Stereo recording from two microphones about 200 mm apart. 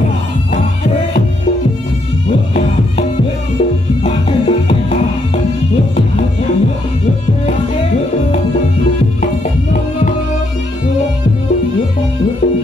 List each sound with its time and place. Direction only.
4.0 s music: 30° left (ahead or behind)
9.2 s music: 40° left (ahead or behind)